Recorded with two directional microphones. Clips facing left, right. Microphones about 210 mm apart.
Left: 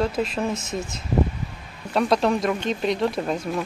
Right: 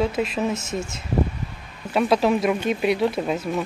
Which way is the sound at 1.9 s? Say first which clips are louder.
Right 1 dB; 5° right (ahead or behind).